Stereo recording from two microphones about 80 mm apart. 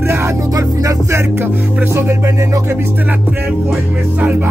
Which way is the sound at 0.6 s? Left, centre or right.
Right.